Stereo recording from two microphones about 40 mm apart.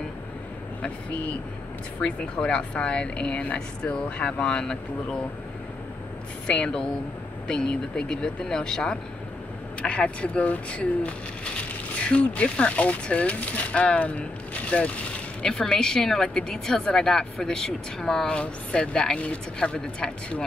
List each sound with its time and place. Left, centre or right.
2.0 s speech: left
6.4 s speech: left
9.8 s speech: left
15.7 s speech: left